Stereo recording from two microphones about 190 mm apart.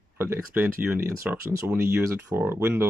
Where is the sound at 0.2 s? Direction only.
10° right (ahead or behind).